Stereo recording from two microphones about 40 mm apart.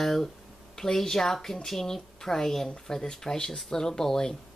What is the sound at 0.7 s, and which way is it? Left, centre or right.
Speech, centre.